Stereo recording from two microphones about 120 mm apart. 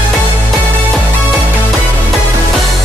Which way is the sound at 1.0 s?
15° right (ahead or behind).